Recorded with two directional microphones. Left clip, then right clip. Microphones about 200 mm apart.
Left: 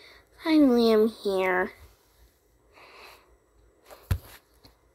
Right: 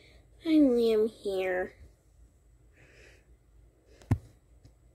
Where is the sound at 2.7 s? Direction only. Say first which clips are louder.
Left 9 dB; 10° right (ahead or behind).